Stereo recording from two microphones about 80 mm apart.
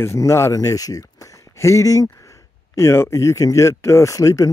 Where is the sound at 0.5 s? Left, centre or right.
Left.